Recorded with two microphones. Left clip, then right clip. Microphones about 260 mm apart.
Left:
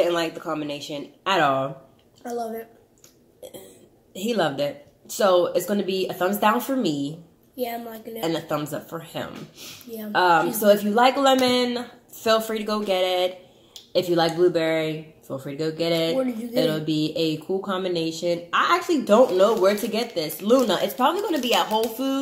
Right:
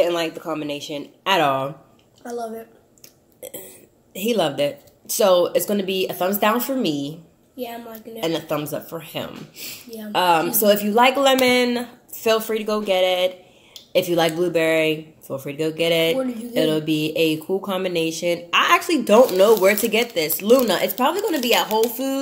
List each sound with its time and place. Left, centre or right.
0.0 s a woman's voice: centre
2.2 s a woman's voice: centre
4.1 s a woman's voice: centre
7.5 s a woman's voice: centre
8.2 s a woman's voice: centre